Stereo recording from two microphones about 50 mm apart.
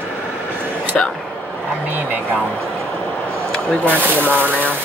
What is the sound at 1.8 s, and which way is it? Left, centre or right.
Speech, right.